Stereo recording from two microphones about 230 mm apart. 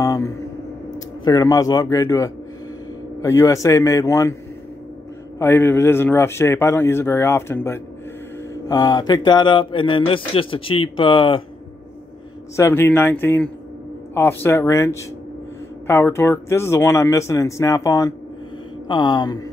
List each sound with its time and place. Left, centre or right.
0.0 s a sound: centre
0.9 s speech: centre
5.4 s speech: centre
12.5 s speech: centre